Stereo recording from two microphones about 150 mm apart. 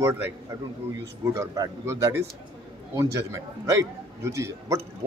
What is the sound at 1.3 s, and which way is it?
A man's voice, 20° right (ahead or behind).